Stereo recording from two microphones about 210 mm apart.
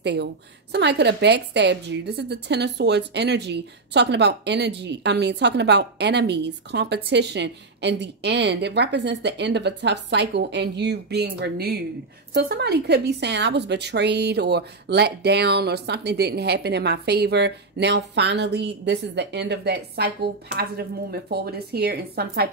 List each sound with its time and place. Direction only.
0.0 s a woman's voice: 55° right (ahead or behind)